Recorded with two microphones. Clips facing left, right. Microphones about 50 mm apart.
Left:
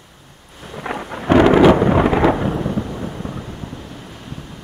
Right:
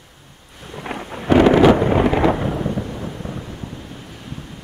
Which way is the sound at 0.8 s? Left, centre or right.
Left.